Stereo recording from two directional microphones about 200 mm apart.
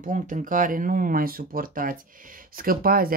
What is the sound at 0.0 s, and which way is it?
Speech, 40° right (ahead or behind).